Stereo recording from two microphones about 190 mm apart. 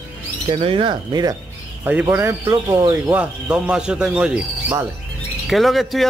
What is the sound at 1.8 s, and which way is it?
Speech, 10° right (ahead or behind).